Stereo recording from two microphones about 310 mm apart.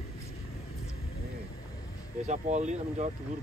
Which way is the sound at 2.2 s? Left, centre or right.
Right.